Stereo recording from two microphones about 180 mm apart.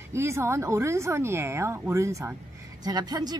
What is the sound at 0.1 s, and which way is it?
Speech, 15° right (ahead or behind).